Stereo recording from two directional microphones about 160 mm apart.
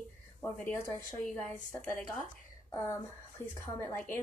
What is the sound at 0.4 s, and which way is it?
A woman's voice, 15° left (ahead or behind).